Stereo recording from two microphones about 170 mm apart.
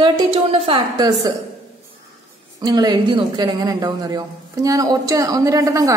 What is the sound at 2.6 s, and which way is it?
A woman's voice, 25° right (ahead or behind).